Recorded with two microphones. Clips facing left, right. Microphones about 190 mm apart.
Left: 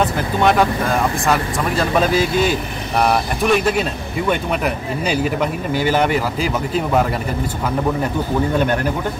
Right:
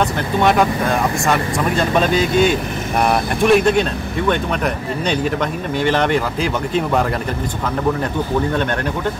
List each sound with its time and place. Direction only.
0.4 s speech: centre (ahead or behind)
5.0 s speech: 5° left (ahead or behind)